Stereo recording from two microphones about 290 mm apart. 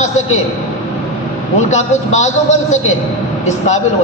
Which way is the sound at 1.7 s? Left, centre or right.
Left.